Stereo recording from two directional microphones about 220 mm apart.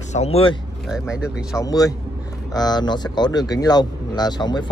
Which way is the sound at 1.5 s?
15° left (ahead or behind).